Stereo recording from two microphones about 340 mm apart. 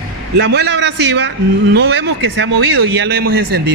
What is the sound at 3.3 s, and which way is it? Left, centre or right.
Speech, right.